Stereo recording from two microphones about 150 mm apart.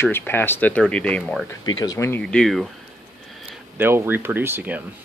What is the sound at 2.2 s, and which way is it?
Speech, 5° left (ahead or behind).